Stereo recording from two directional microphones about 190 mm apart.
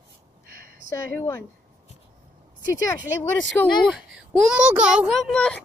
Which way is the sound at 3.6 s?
5° left (ahead or behind).